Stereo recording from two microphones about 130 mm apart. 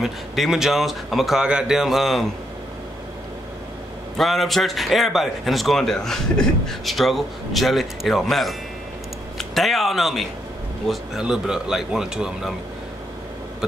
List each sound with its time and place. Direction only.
0.0 s speech: centre (ahead or behind)
4.2 s speech: centre (ahead or behind)